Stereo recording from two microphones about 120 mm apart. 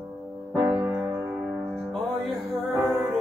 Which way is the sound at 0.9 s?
10° right (ahead or behind).